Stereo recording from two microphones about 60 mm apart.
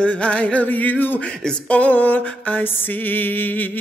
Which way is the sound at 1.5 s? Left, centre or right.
Left.